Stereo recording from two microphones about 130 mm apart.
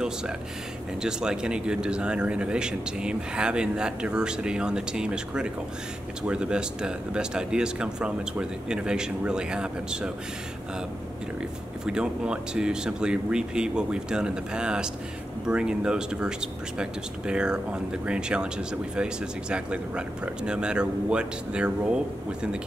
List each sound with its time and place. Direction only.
1.0 s a man's voice: 5° right (ahead or behind)
11.8 s a man's voice: 5° right (ahead or behind)